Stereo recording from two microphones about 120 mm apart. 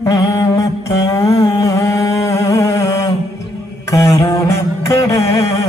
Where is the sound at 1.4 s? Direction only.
30° left (ahead or behind).